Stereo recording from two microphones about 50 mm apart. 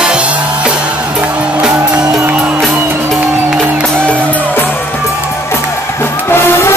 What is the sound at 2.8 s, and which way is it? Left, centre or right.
Music, right.